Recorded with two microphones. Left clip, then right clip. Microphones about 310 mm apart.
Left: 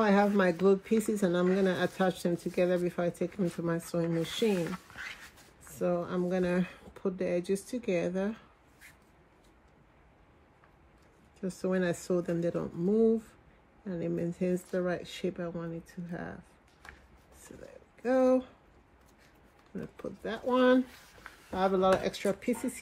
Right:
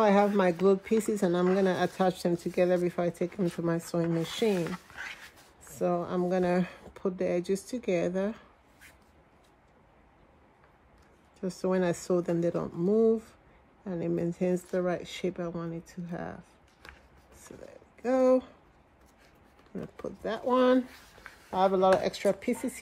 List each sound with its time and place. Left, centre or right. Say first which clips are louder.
0.4 s speech: right 1 dB; centre
4.6 s a sound: right 2 dB; centre
5.8 s speech: right 2 dB; centre
11.4 s speech: right 3 dB; centre
18.0 s speech: right 2 dB; centre
19.7 s speech: right 2 dB; centre
21.1 s a sound: right 2 dB; centre
22.3 s speech: right 2 dB; centre